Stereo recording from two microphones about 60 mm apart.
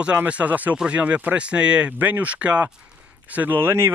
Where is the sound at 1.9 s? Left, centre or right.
Right.